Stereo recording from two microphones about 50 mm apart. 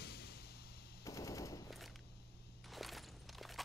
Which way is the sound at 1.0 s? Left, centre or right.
Left.